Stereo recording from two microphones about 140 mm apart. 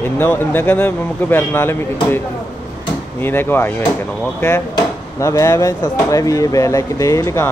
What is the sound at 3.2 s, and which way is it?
Speech, 15° left (ahead or behind).